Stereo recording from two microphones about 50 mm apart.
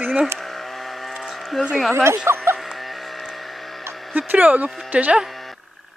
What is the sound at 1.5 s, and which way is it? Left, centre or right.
Speech, centre.